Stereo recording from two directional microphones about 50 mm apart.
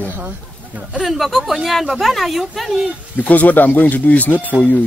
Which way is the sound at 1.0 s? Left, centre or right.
Centre.